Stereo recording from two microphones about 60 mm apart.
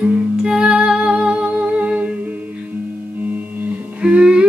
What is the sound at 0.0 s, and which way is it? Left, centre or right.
Music, centre.